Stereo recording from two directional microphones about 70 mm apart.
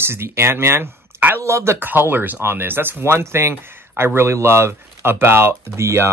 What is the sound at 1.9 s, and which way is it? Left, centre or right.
Speech, right.